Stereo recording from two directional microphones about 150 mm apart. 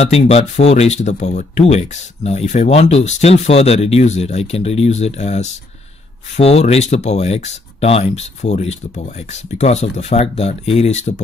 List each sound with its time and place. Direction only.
0.3 s speech: 45° left (ahead or behind)